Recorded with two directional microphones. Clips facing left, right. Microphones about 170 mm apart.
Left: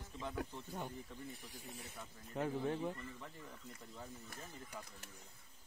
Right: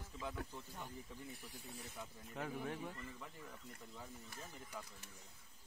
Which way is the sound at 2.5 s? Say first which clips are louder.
Left 6 dB; 30° left (ahead or behind).